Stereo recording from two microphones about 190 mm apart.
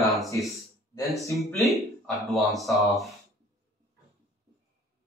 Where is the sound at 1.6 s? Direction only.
Centre (ahead or behind).